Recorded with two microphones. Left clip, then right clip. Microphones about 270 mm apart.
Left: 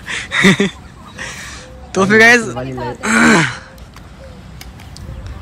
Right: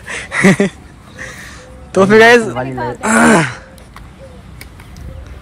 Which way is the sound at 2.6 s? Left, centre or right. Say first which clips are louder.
Right 3 dB; centre.